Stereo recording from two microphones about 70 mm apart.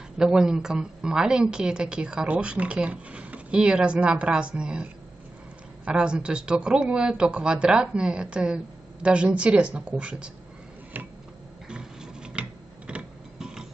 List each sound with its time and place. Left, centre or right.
0.2 s a woman's voice: centre
5.9 s a woman's voice: centre
11.7 s tick-tock: centre